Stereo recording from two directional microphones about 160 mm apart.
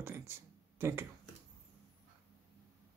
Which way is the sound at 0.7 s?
15° right (ahead or behind).